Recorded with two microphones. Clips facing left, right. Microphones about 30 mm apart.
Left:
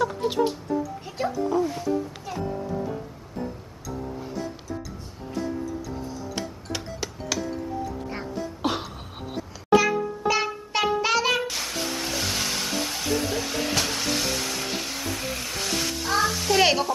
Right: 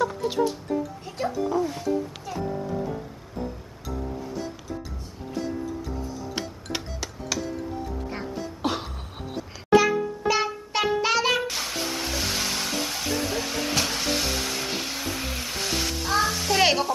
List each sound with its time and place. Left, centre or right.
0.2 s music: left
1.0 s music: centre
7.3 s music: centre
9.7 s a sound: centre